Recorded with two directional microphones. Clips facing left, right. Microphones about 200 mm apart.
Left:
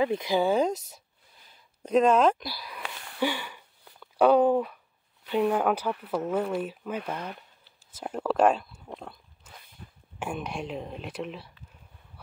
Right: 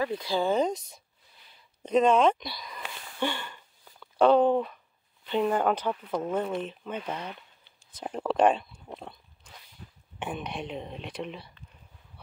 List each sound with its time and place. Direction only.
0.0 s speech: 20° left (ahead or behind)
1.8 s a sound: 5° left (ahead or behind)
5.2 s speech: 5° left (ahead or behind)
8.0 s speech: centre (ahead or behind)
8.9 s dog: centre (ahead or behind)
10.2 s speech: centre (ahead or behind)